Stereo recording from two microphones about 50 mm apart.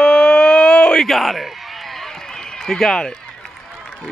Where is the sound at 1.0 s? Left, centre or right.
Centre.